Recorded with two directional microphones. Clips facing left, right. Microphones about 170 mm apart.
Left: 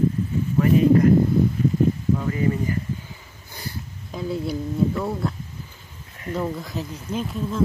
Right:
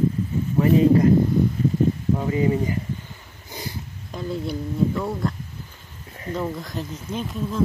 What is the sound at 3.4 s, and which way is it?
Sniff, 10° right (ahead or behind).